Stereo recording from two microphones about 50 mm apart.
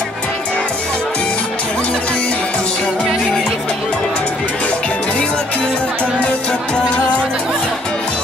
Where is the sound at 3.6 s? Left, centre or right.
Centre.